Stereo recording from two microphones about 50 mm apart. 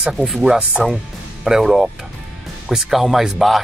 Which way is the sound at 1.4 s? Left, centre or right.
Centre.